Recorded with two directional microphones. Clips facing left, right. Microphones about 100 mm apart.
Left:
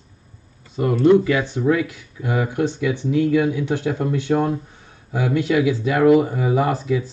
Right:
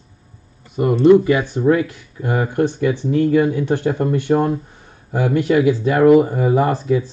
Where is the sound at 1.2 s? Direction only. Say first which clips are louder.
Right 3 dB; 45° right (ahead or behind).